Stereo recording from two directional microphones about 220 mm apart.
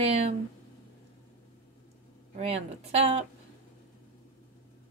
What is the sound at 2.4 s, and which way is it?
Speech, 30° right (ahead or behind).